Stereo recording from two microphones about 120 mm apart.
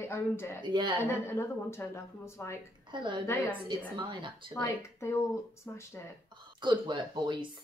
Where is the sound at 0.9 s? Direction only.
20° left (ahead or behind).